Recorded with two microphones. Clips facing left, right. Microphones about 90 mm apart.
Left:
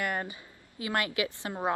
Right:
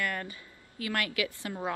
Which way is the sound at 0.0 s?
20° left (ahead or behind).